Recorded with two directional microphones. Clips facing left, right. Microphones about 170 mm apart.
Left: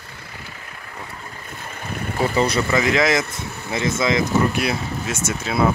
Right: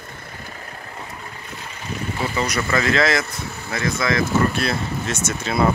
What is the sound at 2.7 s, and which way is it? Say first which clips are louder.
Speech: left 1 dB; 15° left (ahead or behind).